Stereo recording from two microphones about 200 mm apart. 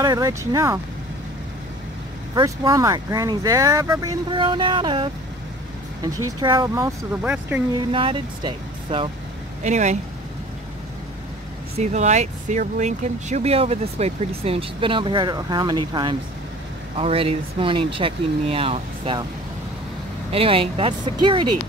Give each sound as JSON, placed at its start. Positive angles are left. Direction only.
{"t": 0.0, "sound": "speech", "side_deg": -15}
{"t": 2.3, "sound": "speech", "side_deg": -20}
{"t": 6.4, "sound": "speech", "side_deg": -20}
{"t": 7.9, "sound": "speech", "side_deg": -25}
{"t": 11.8, "sound": "speech", "side_deg": -35}
{"t": 20.2, "sound": "speech", "side_deg": -30}